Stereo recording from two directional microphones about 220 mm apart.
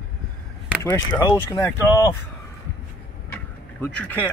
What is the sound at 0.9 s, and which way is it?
Speech, 15° left (ahead or behind).